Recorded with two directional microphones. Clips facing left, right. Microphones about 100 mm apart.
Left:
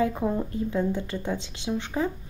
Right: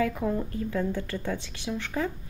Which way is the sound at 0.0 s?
25° left (ahead or behind).